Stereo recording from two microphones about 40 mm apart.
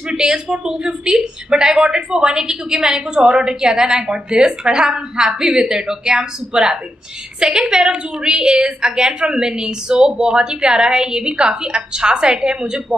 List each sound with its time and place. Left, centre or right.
0.1 s a woman's voice: centre